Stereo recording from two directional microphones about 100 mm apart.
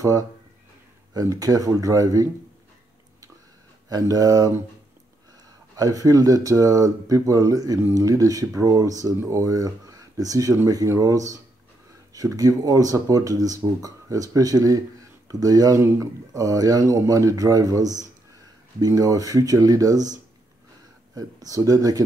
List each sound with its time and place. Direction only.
1.1 s speech: 40° right (ahead or behind)
3.9 s speech: 35° right (ahead or behind)
5.8 s speech: 35° right (ahead or behind)